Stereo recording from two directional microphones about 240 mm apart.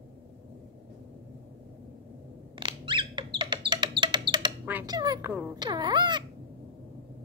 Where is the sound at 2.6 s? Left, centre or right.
Centre.